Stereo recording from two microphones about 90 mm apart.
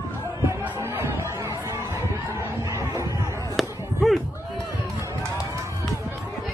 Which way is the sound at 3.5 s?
Centre (ahead or behind).